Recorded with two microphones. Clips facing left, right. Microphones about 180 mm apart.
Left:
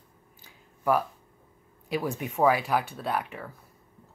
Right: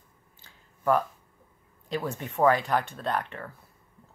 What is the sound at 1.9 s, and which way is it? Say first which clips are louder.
Speech: left 2 dB; 10° left (ahead or behind).